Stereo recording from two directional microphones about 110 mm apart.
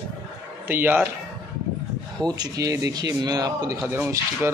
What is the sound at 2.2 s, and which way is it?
Speech, 35° right (ahead or behind).